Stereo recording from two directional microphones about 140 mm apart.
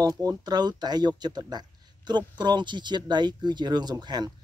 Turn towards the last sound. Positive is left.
turn(degrees=-30)  # may be behind; listen again after turning